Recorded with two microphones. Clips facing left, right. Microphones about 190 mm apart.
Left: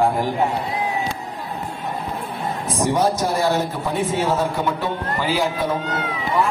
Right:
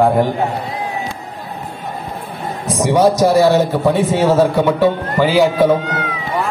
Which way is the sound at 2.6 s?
80° right.